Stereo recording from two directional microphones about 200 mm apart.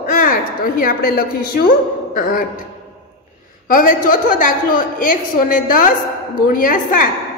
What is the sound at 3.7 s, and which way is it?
A woman's voice, 45° left (ahead or behind).